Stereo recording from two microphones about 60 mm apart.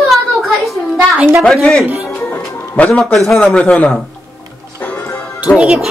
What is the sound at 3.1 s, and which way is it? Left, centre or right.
Speech, centre.